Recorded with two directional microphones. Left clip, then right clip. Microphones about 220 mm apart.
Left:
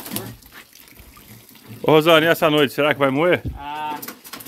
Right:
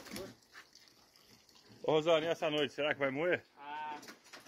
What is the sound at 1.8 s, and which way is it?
Speech, 25° left (ahead or behind).